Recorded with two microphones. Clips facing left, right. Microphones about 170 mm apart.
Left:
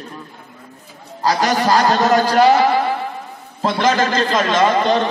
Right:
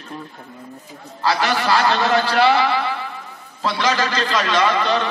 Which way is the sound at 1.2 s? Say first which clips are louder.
Left 3 dB; 40° left (ahead or behind).